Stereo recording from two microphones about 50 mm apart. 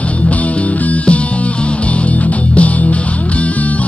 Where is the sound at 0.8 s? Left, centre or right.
Left.